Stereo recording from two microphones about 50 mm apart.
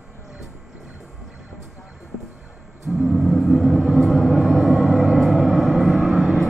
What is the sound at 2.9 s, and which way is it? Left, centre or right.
Music, centre.